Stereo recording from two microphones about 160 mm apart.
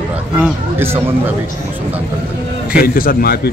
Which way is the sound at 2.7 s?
65° left (ahead or behind).